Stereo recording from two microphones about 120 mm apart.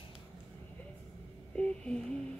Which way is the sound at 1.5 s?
10° left (ahead or behind).